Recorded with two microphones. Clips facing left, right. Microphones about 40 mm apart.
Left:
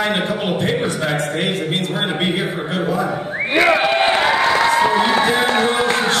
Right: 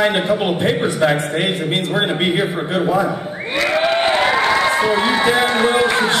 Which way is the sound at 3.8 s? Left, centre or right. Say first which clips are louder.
Even; centre.